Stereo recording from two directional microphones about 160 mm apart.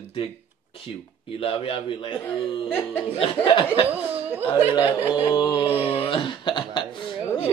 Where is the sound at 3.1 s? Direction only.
35° left (ahead or behind).